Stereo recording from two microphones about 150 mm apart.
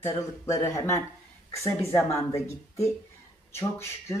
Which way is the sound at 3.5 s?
20° left (ahead or behind).